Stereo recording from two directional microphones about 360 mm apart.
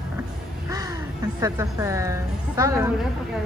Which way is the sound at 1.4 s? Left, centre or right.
Centre.